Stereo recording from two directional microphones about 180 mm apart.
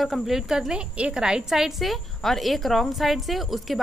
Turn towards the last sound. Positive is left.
turn(degrees=0)  # may be behind; listen again after turning